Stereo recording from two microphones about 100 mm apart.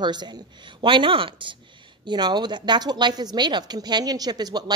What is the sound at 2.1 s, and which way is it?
A woman's voice, 45° right (ahead or behind).